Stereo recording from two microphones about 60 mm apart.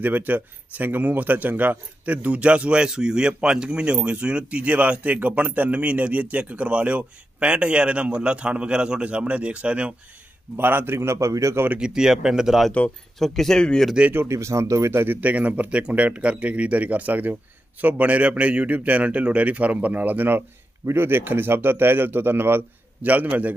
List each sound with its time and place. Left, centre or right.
0.0 s a man's voice: right
10.5 s a man's voice: right
11.8 s speech: centre
13.2 s speech: centre
14.2 s a man's voice: right
15.0 s a man's voice: right